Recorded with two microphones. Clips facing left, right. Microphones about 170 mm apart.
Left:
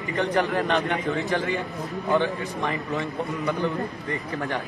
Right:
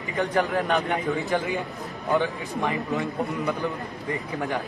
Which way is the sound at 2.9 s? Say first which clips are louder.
Right 1 dB; centre (ahead or behind).